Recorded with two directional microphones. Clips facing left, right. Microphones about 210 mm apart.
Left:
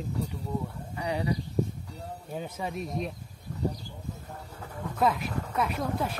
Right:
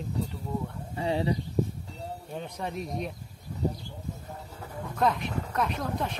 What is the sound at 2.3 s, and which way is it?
Speech, 5° left (ahead or behind).